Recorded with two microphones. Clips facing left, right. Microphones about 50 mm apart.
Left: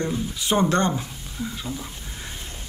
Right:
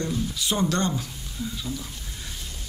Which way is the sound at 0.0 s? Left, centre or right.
Left.